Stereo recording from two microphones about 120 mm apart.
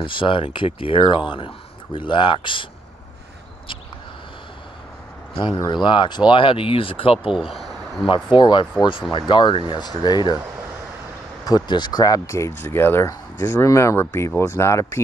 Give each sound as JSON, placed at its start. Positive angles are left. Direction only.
{"t": 0.0, "sound": "speech", "side_deg": 45}
{"t": 5.7, "sound": "speech", "side_deg": 40}
{"t": 7.2, "sound": "speech", "side_deg": -5}
{"t": 8.1, "sound": "speech", "side_deg": 40}
{"t": 11.4, "sound": "speech", "side_deg": 35}